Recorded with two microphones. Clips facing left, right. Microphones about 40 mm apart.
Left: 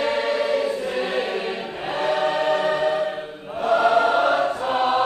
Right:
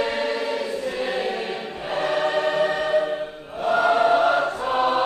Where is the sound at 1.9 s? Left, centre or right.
Centre.